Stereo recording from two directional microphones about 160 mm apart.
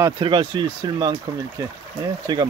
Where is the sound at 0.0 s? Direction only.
30° right (ahead or behind).